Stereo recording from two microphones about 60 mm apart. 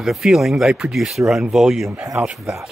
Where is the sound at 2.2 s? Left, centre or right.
Right.